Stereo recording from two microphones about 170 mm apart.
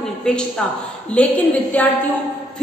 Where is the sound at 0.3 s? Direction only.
5° left (ahead or behind).